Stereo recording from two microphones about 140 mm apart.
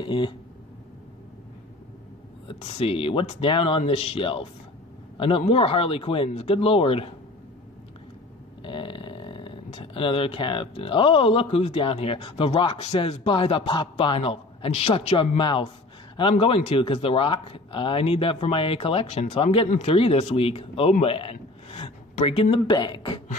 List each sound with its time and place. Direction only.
0.0 s speech: 35° left (ahead or behind)
2.4 s a man's voice: 45° left (ahead or behind)
8.6 s a man's voice: 35° left (ahead or behind)